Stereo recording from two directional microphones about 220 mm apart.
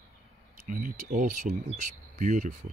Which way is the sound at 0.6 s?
35° right (ahead or behind).